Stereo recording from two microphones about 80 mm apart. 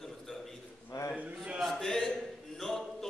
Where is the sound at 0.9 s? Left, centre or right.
Left.